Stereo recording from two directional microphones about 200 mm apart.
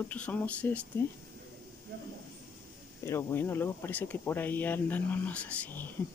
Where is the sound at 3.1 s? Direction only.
15° left (ahead or behind).